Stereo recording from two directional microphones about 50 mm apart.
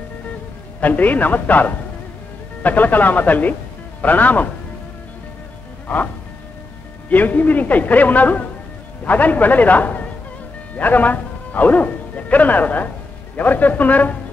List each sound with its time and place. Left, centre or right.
0.7 s a man's voice: left
7.1 s a man's voice: left